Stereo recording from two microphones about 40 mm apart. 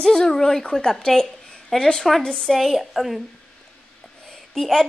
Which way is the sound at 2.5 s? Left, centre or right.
Centre.